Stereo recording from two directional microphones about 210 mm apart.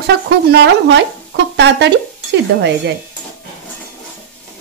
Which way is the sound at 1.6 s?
55° right (ahead or behind).